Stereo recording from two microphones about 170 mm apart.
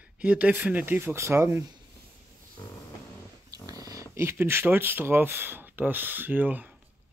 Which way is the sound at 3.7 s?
20° right (ahead or behind).